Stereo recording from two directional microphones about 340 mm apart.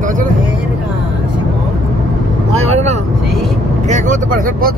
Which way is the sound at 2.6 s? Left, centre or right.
Centre.